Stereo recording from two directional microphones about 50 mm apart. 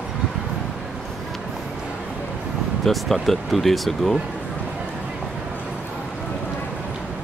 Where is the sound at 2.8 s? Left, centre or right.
Centre.